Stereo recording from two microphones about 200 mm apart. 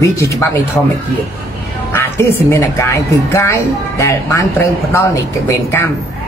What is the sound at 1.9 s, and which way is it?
A woman's voice, 10° left (ahead or behind).